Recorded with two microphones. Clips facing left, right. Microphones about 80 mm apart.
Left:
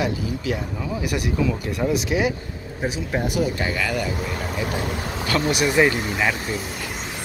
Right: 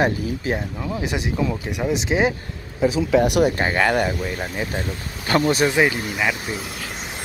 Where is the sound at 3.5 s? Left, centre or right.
Right.